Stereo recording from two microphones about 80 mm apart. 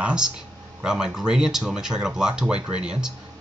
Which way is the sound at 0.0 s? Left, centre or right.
Centre.